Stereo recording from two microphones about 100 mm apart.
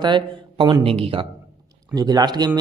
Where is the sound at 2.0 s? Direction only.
40° right (ahead or behind).